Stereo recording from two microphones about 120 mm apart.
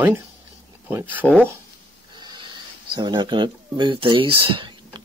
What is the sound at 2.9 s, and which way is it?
Speech, 40° right (ahead or behind).